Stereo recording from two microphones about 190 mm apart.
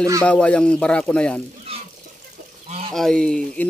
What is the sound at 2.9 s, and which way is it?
Speech, centre (ahead or behind).